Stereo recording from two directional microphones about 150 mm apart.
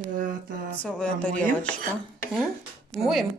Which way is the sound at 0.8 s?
10° left (ahead or behind).